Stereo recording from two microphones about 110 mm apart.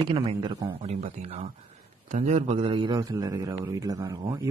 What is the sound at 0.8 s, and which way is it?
Speech, 70° right (ahead or behind).